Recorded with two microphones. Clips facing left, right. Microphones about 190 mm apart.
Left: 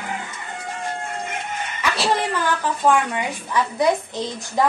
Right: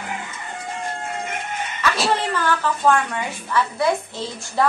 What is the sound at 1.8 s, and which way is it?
A woman's voice, 15° left (ahead or behind).